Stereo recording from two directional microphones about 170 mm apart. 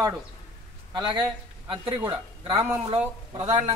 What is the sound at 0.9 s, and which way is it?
Speech, 25° right (ahead or behind).